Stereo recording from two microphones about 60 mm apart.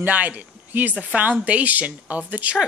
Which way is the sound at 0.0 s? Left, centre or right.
Right.